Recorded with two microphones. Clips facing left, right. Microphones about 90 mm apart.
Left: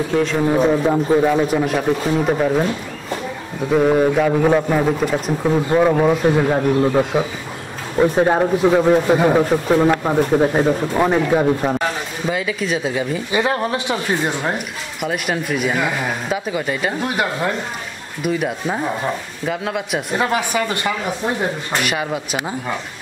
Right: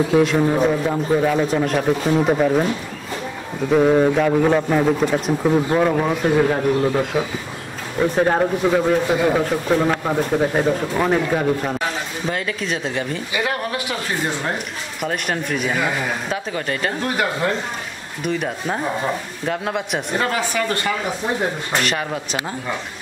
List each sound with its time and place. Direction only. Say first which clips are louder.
0.1 s a man's voice: even; 5° right (ahead or behind)
0.6 s a man's voice: left 3 dB; 15° left (ahead or behind)
3.7 s a man's voice: even; centre (ahead or behind)
13.3 s speech: left 5 dB; 30° left (ahead or behind)
15.0 s a man's voice: left 2 dB; 5° left (ahead or behind)
20.2 s speech: left 2 dB; 15° left (ahead or behind)